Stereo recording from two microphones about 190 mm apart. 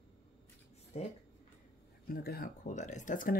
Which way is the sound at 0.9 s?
35° left (ahead or behind).